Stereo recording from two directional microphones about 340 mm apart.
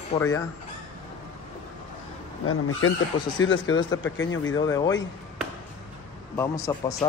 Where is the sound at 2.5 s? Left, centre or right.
Left.